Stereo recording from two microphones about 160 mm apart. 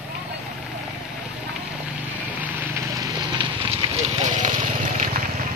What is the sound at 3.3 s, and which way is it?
Fire, 30° right (ahead or behind).